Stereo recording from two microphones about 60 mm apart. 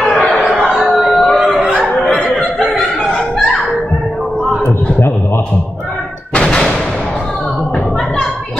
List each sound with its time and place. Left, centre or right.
1.1 s a sound: centre
1.7 s music: left
6.3 s artillery fire: centre